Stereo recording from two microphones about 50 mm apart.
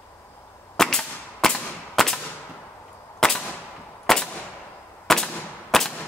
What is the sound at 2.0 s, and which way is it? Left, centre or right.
Whip, centre.